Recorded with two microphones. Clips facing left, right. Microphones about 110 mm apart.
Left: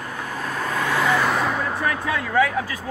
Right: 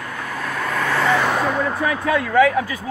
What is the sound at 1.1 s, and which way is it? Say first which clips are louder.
Vehicle: right 2 dB; centre (ahead or behind).